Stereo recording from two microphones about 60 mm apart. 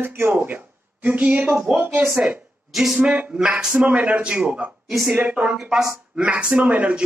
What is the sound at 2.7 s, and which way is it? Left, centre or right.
Speech, centre.